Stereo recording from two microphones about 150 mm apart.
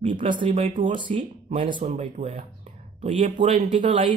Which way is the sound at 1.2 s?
55° right (ahead or behind).